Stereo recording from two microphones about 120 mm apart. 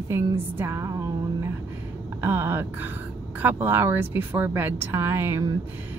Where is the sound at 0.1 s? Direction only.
25° right (ahead or behind).